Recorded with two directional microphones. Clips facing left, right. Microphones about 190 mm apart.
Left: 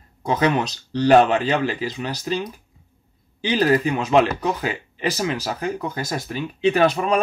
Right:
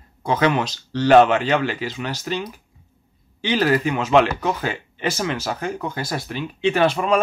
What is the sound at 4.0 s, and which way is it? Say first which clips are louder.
Speech: right 1 dB; 15° left (ahead or behind).